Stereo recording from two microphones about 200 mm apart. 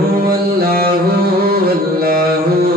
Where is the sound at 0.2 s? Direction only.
50° right (ahead or behind).